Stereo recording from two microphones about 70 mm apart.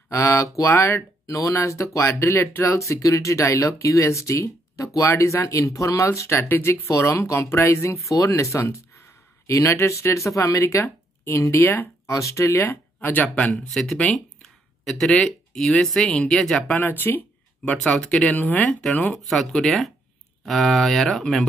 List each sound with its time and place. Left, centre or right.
0.1 s speech: left
1.2 s speech: left
12.1 s speech: left
13.7 s speech: centre
16.7 s speech: left
18.1 s speech: centre
19.1 s speech: centre